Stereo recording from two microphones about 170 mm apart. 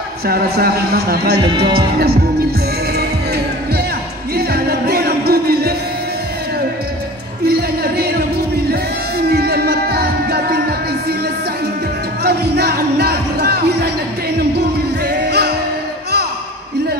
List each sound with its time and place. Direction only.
0.3 s speech: 65° right (ahead or behind)
3.0 s music: 65° right (ahead or behind)
7.4 s music: 65° right (ahead or behind)
12.2 s music: 65° right (ahead or behind)